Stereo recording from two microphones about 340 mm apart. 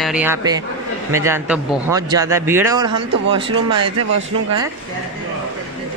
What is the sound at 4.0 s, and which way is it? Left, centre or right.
Speech, right.